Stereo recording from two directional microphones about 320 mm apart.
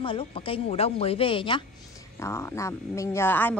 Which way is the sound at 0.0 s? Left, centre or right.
Centre.